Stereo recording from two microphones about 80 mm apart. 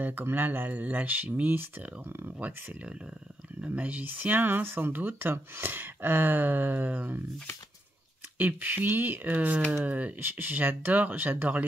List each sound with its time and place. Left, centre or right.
0.0 s speech: right
8.4 s speech: right